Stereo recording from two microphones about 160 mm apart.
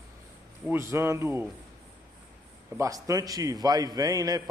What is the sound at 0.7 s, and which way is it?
Speech, 15° right (ahead or behind).